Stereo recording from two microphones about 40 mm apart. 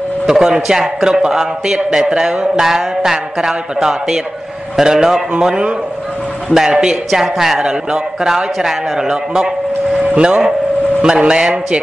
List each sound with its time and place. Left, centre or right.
0.3 s a man's voice: centre